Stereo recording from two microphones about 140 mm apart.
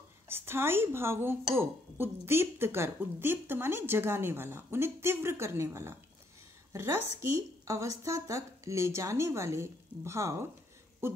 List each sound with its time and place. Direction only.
0.3 s speech: 15° right (ahead or behind)